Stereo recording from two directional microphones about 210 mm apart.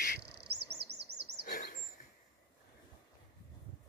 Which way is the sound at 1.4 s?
45° left (ahead or behind).